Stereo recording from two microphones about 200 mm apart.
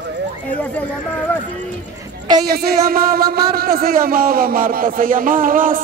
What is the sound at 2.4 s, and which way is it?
Speech, 50° right (ahead or behind).